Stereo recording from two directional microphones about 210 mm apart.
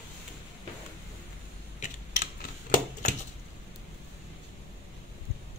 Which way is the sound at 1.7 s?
40° left (ahead or behind).